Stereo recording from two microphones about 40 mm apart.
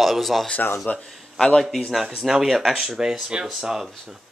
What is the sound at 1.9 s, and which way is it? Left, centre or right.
Speech, centre.